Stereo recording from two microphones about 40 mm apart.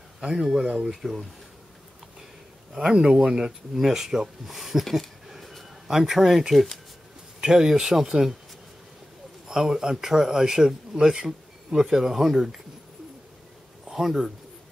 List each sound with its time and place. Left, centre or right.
0.2 s a man's voice: centre
0.8 s speech: centre
2.7 s a man's voice: centre
7.3 s a man's voice: centre
9.5 s a man's voice: centre
13.8 s a sound: centre